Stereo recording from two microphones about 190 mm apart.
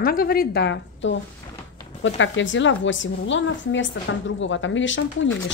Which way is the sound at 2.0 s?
80° left.